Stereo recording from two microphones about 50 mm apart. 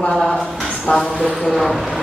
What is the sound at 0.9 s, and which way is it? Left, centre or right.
Speech, centre.